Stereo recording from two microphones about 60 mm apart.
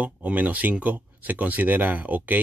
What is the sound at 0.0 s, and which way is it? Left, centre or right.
Speech, right.